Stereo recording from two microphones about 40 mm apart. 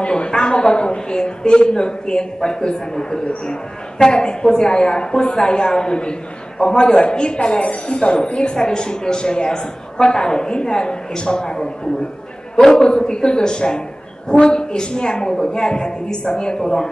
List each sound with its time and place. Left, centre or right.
0.0 s a woman's voice: left